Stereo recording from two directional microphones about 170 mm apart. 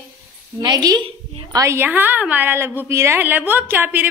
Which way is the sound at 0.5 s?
25° right (ahead or behind).